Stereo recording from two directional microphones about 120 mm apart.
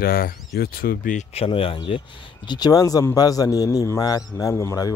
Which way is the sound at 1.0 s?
90° left.